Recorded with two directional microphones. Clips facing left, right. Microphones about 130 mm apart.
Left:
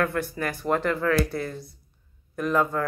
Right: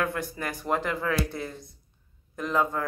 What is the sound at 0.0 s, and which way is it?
Speech, 20° right (ahead or behind).